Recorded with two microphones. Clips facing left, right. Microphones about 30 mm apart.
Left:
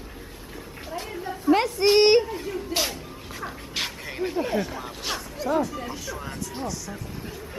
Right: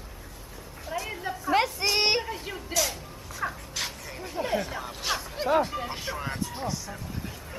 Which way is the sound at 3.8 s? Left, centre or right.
Left.